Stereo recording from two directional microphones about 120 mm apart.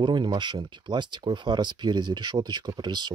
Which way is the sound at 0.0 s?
40° right (ahead or behind).